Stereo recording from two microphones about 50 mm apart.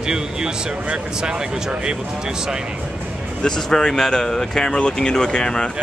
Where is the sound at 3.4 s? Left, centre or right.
Centre.